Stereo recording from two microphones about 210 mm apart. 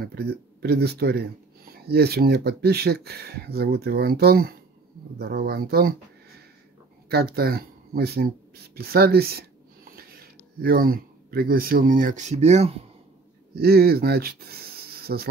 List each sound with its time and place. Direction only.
0.0 s speech: 50° right (ahead or behind)
7.1 s speech: 50° right (ahead or behind); by 12.8 s 30° right (ahead or behind)
13.6 s speech: 45° right (ahead or behind)